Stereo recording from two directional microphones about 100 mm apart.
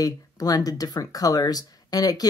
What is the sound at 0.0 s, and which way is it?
Speech, 40° left (ahead or behind).